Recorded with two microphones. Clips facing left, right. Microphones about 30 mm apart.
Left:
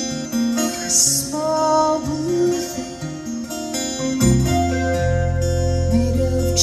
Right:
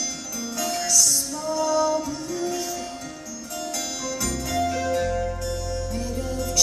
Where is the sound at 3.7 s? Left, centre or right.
Left.